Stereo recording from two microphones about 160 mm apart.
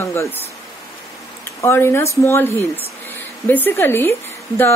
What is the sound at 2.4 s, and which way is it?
Speech, 20° right (ahead or behind).